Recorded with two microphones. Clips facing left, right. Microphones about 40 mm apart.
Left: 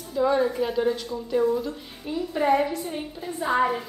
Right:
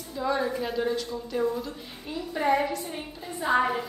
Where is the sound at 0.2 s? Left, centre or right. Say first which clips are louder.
Left 5 dB; centre.